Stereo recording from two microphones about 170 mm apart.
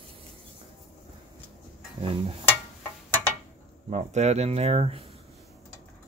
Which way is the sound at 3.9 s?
40° right (ahead or behind).